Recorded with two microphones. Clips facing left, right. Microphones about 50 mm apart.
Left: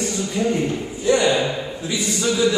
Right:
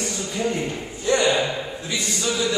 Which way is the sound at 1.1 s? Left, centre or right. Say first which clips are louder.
Left 2 dB; centre.